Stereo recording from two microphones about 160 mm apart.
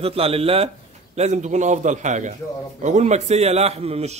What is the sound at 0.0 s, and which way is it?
A man's voice, 35° right (ahead or behind).